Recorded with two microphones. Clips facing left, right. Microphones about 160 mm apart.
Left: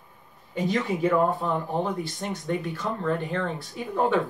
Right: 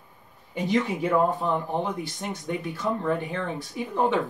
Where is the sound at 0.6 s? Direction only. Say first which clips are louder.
Even; 20° right (ahead or behind).